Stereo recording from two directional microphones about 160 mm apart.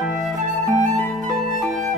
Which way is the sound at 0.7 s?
50° right (ahead or behind).